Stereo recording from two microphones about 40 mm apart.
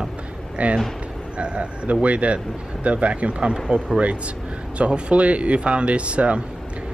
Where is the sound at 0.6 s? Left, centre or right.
Right.